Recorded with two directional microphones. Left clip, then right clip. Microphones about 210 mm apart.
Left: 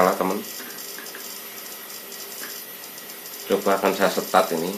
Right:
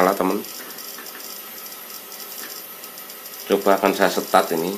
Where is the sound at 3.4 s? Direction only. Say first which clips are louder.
Right 3 dB; 45° right (ahead or behind).